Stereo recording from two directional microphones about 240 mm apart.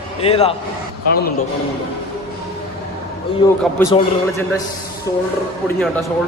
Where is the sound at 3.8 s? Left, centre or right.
Centre.